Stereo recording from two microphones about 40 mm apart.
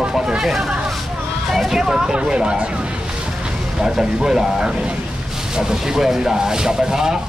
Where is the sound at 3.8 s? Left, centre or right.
Centre.